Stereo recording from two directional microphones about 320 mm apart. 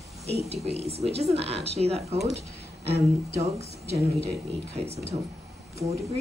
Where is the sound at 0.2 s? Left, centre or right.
Centre.